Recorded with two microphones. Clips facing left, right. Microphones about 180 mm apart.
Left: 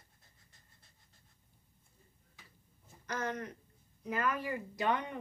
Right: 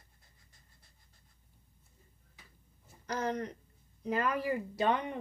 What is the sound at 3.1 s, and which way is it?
Speech, 35° right (ahead or behind).